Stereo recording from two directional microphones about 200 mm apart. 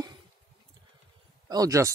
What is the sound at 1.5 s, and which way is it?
Speech, 15° right (ahead or behind).